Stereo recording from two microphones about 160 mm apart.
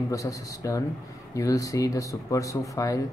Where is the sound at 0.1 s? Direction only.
20° left (ahead or behind).